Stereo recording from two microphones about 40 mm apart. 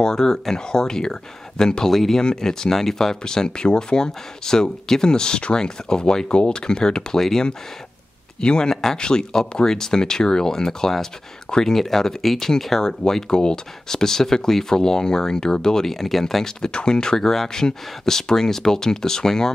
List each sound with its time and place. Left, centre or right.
0.0 s speech: centre
1.9 s speech: centre
8.4 s speech: left